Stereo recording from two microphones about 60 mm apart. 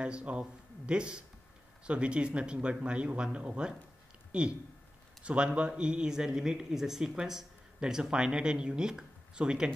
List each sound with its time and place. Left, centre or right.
0.0 s speech: centre